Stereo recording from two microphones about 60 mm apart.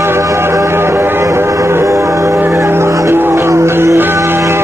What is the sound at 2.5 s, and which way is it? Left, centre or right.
Music, right.